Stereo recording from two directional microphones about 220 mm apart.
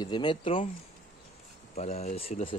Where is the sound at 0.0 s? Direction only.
20° left (ahead or behind).